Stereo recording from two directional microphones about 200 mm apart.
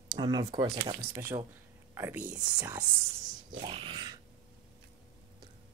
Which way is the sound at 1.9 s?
10° right (ahead or behind).